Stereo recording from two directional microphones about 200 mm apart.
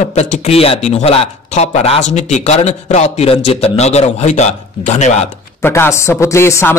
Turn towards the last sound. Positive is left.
turn(degrees=10)  # may be behind; listen again after turning